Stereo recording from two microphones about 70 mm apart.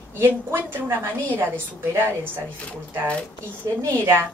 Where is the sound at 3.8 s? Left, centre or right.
Right.